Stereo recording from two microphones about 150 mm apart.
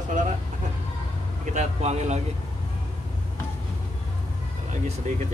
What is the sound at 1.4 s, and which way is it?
Speech, 50° right (ahead or behind).